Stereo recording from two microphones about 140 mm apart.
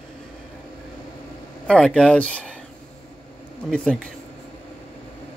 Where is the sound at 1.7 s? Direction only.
5° left (ahead or behind).